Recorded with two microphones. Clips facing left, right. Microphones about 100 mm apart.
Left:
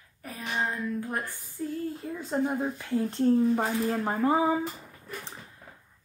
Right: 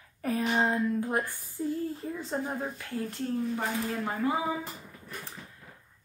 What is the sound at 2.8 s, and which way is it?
Speech, 30° left (ahead or behind).